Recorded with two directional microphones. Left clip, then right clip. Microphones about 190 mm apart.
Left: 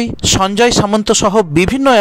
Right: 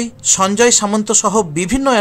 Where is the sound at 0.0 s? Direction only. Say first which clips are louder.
Left 2 dB; 45° left (ahead or behind).